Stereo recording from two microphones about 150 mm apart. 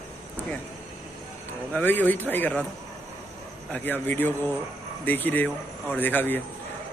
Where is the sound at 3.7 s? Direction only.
10° left (ahead or behind).